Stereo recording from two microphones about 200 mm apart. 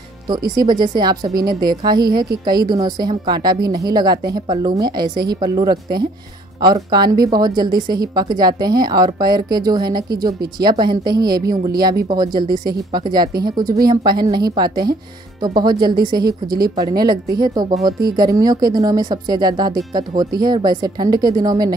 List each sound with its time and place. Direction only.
0.6 s a woman's voice: 20° right (ahead or behind)